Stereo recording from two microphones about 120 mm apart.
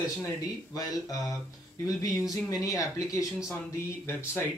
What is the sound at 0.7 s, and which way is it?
Speech, 30° left (ahead or behind).